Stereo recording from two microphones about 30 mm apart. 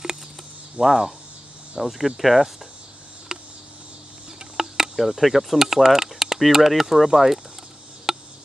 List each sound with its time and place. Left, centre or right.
0.7 s speech: centre
3.3 s a sound: centre
4.6 s insect: right
4.9 s speech: centre
5.6 s typing: centre
6.7 s speech: centre
8.1 s a sound: centre